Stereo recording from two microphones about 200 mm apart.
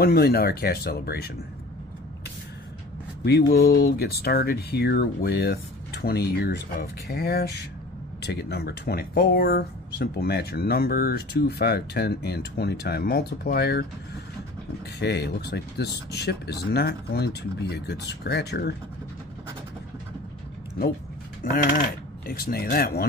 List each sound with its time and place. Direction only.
0.0 s speech: 50° left (ahead or behind)
3.3 s speech: 55° left (ahead or behind)
15.0 s speech: 55° left (ahead or behind)
22.3 s speech: 45° left (ahead or behind)